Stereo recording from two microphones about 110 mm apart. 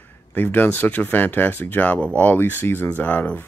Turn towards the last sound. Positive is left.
turn(degrees=15)  # may be behind; listen again after turning